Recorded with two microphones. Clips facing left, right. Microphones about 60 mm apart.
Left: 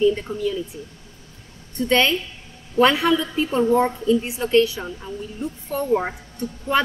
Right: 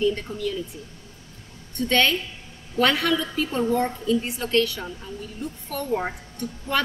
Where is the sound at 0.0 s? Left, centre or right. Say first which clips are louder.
Left 5 dB; centre.